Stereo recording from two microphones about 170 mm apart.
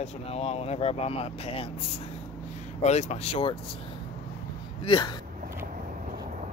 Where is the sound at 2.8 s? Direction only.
40° left (ahead or behind).